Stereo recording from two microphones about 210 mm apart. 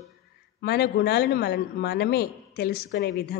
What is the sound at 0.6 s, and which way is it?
A woman's voice, 50° left (ahead or behind).